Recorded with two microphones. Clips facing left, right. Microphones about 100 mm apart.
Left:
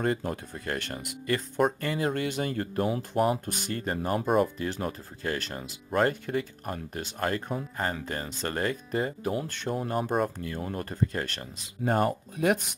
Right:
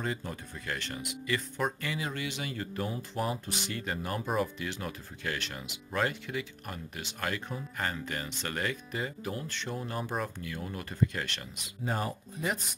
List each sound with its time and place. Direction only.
0.0 s speech: 50° left (ahead or behind)